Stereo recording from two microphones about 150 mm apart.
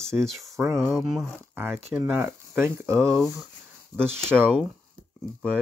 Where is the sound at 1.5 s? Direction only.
15° right (ahead or behind).